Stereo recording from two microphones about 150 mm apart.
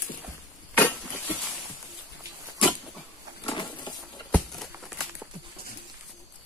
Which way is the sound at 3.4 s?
35° left (ahead or behind).